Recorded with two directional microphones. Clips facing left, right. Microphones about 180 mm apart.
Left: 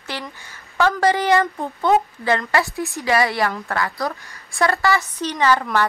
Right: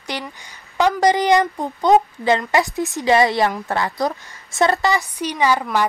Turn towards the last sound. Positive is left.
turn(degrees=-15)  # may be behind; listen again after turning